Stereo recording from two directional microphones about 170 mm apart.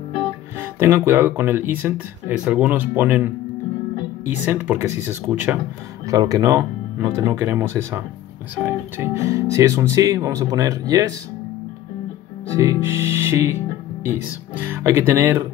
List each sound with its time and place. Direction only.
0.6 s speech: 15° right (ahead or behind)
4.5 s speech: 10° right (ahead or behind)
12.4 s speech: 20° right (ahead or behind)
14.6 s speech: 15° right (ahead or behind)